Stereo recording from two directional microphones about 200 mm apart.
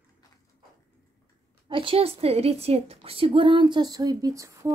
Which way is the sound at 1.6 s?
25° right (ahead or behind).